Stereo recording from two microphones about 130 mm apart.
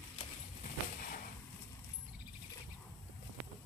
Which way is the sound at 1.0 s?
90° left.